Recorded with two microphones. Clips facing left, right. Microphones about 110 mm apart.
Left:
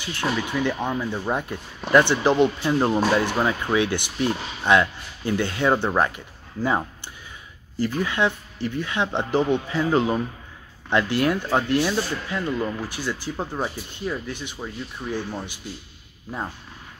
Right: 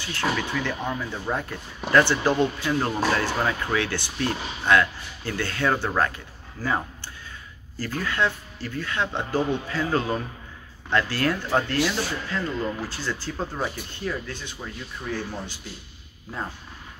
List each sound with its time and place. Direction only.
0.0 s speech: 15° left (ahead or behind)